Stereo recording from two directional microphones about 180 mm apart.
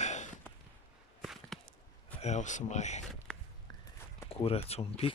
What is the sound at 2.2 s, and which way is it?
Speech, 40° left (ahead or behind).